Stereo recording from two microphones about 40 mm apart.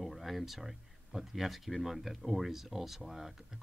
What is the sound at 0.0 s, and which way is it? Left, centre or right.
Speech, centre.